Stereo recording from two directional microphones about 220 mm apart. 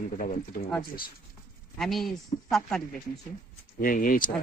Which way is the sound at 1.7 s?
Centre (ahead or behind).